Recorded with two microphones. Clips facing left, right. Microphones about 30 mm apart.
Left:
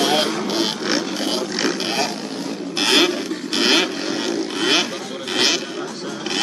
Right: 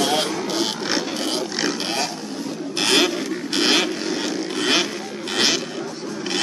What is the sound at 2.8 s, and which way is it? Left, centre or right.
Vehicle, centre.